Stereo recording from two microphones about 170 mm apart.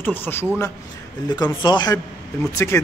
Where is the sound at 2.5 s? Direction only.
15° left (ahead or behind).